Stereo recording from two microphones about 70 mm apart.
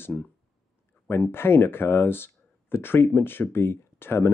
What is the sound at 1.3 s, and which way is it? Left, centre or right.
Speech, left.